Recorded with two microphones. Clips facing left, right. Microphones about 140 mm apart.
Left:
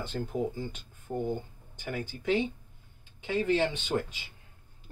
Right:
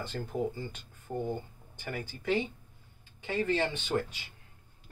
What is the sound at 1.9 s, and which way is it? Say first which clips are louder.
Speech: left 2 dB; 20° left (ahead or behind).